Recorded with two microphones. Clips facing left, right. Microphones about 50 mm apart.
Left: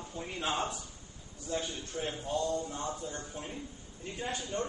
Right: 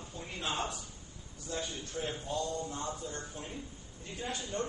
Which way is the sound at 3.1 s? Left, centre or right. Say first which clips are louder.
Left 1 dB; centre.